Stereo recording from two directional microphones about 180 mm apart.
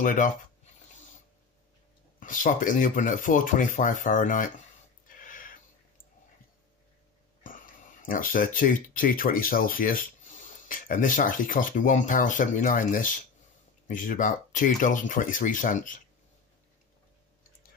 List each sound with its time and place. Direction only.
0.0 s speech: 45° left (ahead or behind)
2.1 s speech: 45° left (ahead or behind)
5.0 s a sound: 50° left (ahead or behind)
8.0 s speech: 50° left (ahead or behind)